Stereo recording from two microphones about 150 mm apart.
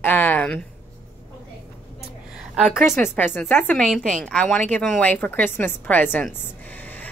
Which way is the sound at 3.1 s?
15° left (ahead or behind).